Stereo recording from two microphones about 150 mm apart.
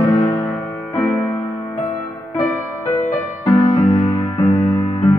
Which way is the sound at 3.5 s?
25° left (ahead or behind).